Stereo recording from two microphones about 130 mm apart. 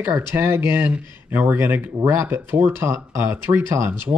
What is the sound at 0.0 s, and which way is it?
Speech, 15° right (ahead or behind).